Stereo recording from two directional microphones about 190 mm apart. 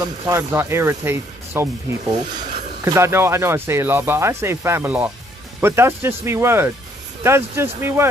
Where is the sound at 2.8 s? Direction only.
15° right (ahead or behind).